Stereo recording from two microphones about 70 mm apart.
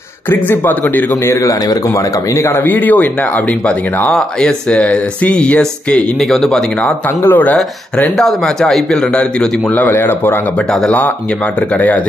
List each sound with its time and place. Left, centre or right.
0.3 s speech: left
1.3 s speech: left
2.6 s speech: left
4.1 s speech: centre
6.1 s speech: centre
7.2 s speech: left
8.2 s speech: centre
9.1 s speech: centre
9.7 s speech: left
11.7 s speech: left